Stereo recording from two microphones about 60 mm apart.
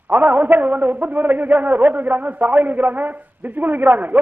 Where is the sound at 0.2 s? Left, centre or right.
Right.